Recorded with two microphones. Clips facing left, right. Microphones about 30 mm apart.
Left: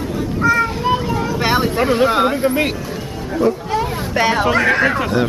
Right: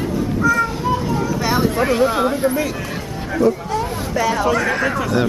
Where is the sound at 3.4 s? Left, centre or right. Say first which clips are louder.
Even; left.